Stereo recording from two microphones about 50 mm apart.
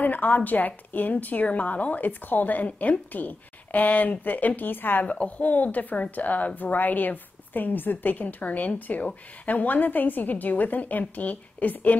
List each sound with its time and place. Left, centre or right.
0.0 s a woman's voice: left
5.0 s a woman's voice: left